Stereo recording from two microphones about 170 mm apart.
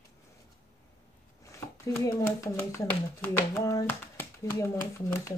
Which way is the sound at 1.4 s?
15° left (ahead or behind).